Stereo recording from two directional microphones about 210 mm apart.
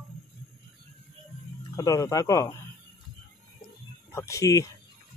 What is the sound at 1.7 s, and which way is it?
Speech, 15° left (ahead or behind).